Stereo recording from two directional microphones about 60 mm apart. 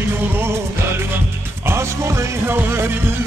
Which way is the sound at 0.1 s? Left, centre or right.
Right.